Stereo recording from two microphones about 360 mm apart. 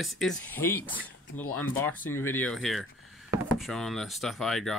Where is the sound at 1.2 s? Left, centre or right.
Left.